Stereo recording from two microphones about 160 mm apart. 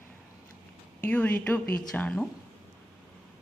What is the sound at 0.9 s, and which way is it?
A woman's voice, 10° left (ahead or behind).